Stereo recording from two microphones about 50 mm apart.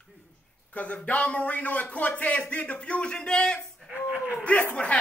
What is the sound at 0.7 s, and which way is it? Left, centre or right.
A man's voice, left.